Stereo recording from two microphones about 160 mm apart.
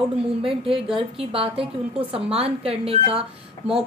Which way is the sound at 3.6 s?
10° right (ahead or behind).